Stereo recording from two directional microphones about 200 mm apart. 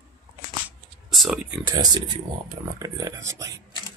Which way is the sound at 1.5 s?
15° right (ahead or behind).